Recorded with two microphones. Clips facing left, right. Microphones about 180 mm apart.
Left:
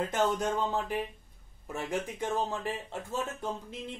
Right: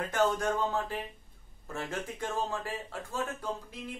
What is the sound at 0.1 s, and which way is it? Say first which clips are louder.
Speech: even; 20° left (ahead or behind).